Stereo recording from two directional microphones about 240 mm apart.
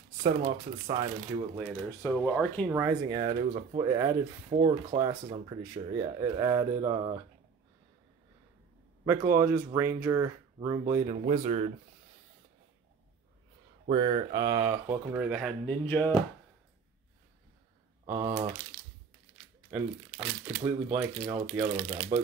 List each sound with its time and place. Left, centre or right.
0.2 s speech: right
1.9 s speech: centre
2.7 s speech: centre
9.0 s speech: centre
11.2 s speech: right
13.8 s speech: right; by 16.2 s centre
18.0 s speech: centre
19.7 s speech: centre
22.1 s speech: right